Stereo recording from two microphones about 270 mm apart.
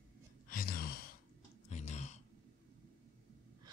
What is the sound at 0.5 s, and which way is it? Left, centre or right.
Gasp, left.